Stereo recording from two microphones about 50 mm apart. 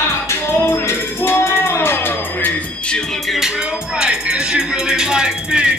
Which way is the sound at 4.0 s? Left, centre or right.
Centre.